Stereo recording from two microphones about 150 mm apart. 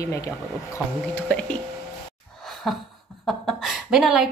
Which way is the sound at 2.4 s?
Centre (ahead or behind).